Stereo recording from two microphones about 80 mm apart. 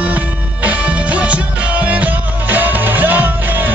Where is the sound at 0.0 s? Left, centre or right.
Centre.